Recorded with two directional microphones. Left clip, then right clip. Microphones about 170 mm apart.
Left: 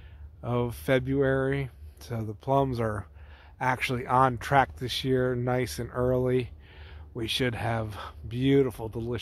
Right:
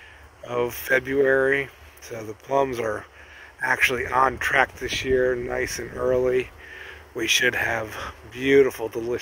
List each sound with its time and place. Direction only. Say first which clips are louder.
0.5 s speech: right 4 dB; 20° left (ahead or behind)